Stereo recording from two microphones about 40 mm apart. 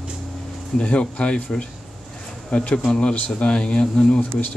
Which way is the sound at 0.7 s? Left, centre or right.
Left.